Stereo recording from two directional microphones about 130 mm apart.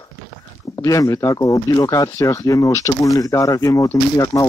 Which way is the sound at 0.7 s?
25° left (ahead or behind).